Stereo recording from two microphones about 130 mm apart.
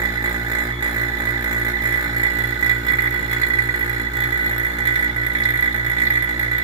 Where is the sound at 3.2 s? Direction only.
35° right (ahead or behind).